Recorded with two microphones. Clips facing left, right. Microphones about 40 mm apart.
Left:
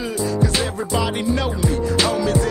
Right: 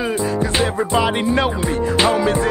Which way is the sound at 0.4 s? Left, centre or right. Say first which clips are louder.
Right 3 dB; right.